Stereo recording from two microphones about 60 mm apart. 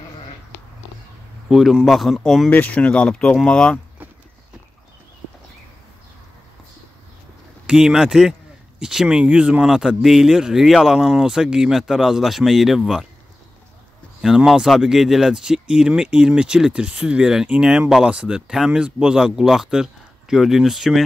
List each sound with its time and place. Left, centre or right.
1.5 s speech: centre
2.5 s speech: left
7.6 s speech: centre
14.2 s speech: centre